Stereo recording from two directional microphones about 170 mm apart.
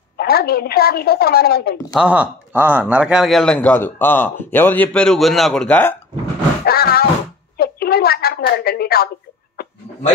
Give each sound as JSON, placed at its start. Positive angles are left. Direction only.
{"t": 0.2, "sound": "a woman's voice", "side_deg": 65}
{"t": 2.0, "sound": "speech", "side_deg": -10}
{"t": 6.6, "sound": "a sound", "side_deg": 65}